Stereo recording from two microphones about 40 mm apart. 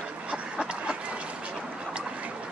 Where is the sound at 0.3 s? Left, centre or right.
Right.